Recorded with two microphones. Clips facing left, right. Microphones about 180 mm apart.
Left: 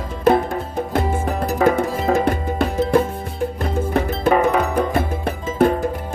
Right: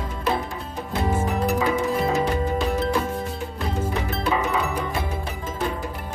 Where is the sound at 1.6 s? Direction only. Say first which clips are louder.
Left 4 dB; 60° left (ahead or behind).